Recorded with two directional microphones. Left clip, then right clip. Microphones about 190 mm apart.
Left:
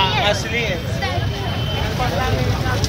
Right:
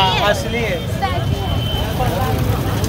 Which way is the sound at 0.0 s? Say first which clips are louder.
Right 2 dB; 50° right (ahead or behind).